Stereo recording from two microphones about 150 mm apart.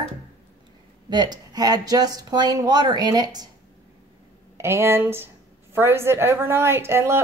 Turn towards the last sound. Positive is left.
turn(degrees=-15)  # may be behind; listen again after turning